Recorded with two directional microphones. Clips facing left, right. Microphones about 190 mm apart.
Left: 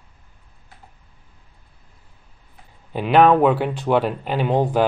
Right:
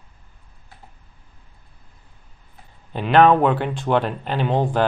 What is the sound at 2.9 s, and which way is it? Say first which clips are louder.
Speech: even; 10° left (ahead or behind).